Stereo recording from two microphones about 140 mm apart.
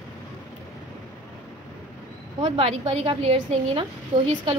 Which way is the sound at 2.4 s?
40° right (ahead or behind).